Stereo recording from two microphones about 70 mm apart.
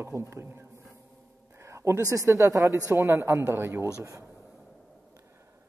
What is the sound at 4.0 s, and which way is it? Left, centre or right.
Speech, right.